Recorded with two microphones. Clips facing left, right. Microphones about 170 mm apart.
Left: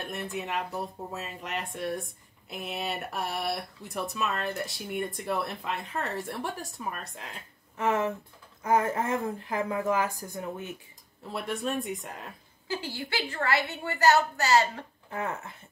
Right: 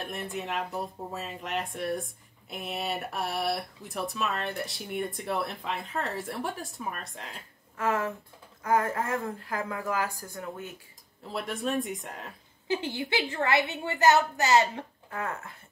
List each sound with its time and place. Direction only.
0.0 s speech: centre (ahead or behind)
7.7 s speech: 20° left (ahead or behind)
11.2 s speech: centre (ahead or behind)
12.6 s a woman's voice: 20° right (ahead or behind)
15.0 s speech: 20° left (ahead or behind)